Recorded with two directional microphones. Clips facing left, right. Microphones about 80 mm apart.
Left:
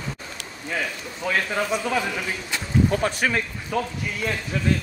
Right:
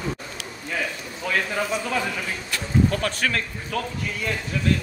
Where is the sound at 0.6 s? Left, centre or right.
Centre.